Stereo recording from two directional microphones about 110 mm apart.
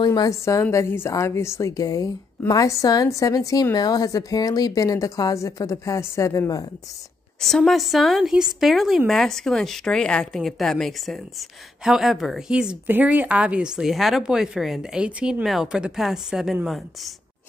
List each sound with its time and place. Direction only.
0.0 s a woman's voice: 35° left (ahead or behind)
7.3 s a woman's voice: 5° left (ahead or behind)